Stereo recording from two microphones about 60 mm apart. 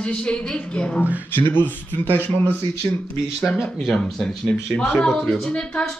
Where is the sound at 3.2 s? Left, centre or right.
Centre.